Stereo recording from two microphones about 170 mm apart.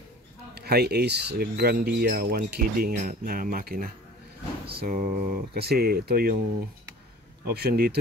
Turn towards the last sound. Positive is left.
turn(degrees=-65)  # may be behind; listen again after turning